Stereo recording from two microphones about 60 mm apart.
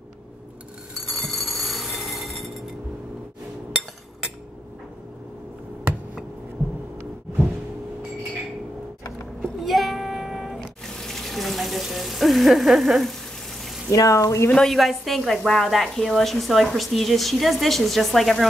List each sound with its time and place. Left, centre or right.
0.9 s a sound: centre
9.4 s child singing: centre
10.9 s water tap: centre
13.8 s speech: left
14.5 s a woman's voice: centre